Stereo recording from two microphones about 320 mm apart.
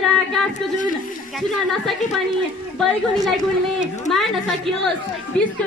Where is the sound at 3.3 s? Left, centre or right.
Centre.